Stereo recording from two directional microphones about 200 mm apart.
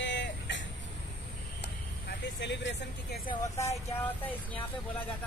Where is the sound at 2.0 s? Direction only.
60° left (ahead or behind).